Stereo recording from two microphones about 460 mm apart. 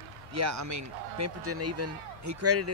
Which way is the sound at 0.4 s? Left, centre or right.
Right.